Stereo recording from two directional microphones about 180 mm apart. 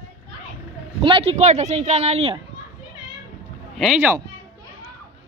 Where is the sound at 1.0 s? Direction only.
30° right (ahead or behind).